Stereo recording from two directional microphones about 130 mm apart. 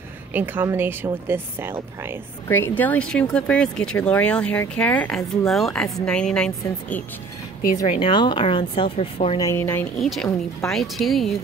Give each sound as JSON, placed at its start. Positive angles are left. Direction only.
{"t": 0.3, "sound": "speech", "side_deg": -15}
{"t": 2.4, "sound": "speech", "side_deg": 15}
{"t": 8.0, "sound": "speech", "side_deg": 35}
{"t": 9.4, "sound": "a woman's voice", "side_deg": 20}
{"t": 9.9, "sound": "speech", "side_deg": 0}